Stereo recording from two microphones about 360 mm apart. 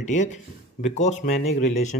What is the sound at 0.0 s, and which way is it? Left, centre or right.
A man's voice, centre.